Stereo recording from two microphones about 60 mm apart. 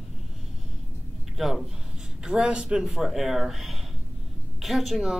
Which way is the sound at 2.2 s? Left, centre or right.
Centre.